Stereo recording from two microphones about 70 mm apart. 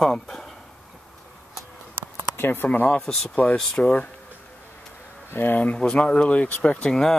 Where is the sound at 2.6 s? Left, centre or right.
Centre.